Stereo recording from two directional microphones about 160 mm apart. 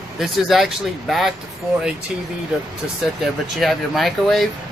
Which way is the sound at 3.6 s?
Centre (ahead or behind).